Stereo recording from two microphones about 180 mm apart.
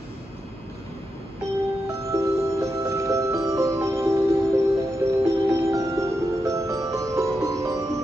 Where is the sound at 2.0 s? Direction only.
15° right (ahead or behind).